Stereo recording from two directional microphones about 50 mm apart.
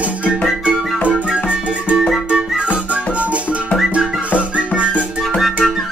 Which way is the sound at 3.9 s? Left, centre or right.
Right.